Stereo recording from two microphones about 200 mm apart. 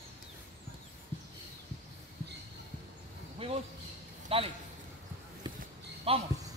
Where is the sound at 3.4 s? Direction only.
30° right (ahead or behind).